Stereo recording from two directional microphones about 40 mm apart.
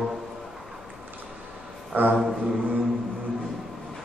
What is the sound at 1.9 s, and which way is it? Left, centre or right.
Speech, right.